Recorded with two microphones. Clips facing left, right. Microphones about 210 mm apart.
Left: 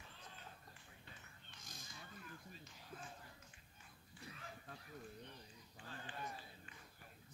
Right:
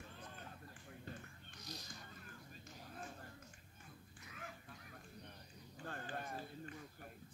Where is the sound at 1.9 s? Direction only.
45° right (ahead or behind).